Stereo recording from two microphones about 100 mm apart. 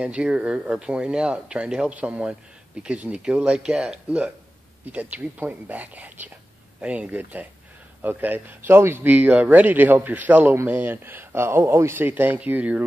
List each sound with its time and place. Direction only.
0.0 s speech: 10° right (ahead or behind)